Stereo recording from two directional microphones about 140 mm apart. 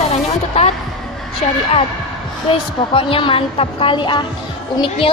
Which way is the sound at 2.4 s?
40° left (ahead or behind).